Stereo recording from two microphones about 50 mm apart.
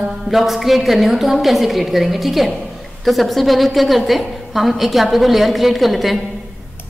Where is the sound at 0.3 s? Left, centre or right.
Centre.